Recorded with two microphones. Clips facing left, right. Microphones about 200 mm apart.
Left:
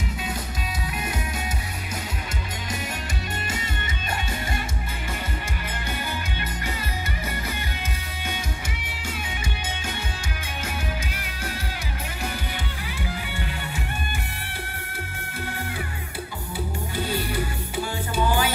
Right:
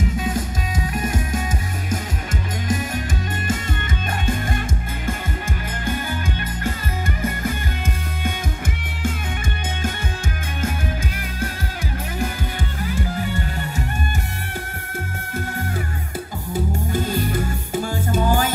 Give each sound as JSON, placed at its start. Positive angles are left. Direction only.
{"t": 0.9, "sound": "music", "side_deg": -45}
{"t": 12.8, "sound": "music", "side_deg": -45}
{"t": 16.5, "sound": "music", "side_deg": -45}